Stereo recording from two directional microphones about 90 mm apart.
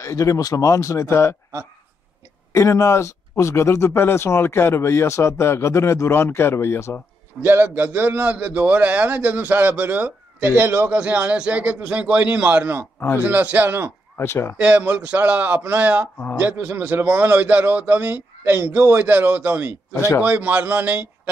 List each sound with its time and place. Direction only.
0.0 s speech: 35° left (ahead or behind)
2.5 s speech: 35° left (ahead or behind)
7.4 s a man's voice: 20° right (ahead or behind)
14.1 s speech: 30° left (ahead or behind)
14.6 s a man's voice: 15° right (ahead or behind)
19.9 s speech: 30° left (ahead or behind)
20.2 s a man's voice: 20° right (ahead or behind)